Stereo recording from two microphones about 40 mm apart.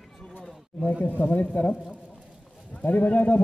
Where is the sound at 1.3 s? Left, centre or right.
Left.